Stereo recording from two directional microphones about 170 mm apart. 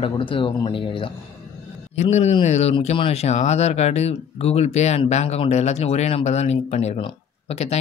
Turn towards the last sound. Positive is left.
turn(degrees=40)  # may be behind; listen again after turning